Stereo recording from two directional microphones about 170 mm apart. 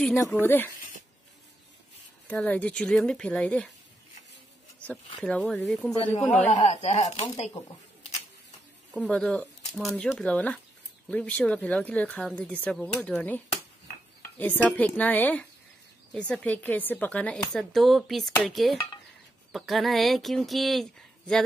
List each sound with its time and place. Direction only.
0.0 s a woman's voice: 5° left (ahead or behind)
2.2 s speech: 10° left (ahead or behind)
5.2 s speech: centre (ahead or behind)
6.5 s speech: 35° left (ahead or behind)
7.5 s speech: 20° left (ahead or behind)
8.9 s a woman's voice: 5° left (ahead or behind)
14.4 s a woman's voice: 10° left (ahead or behind)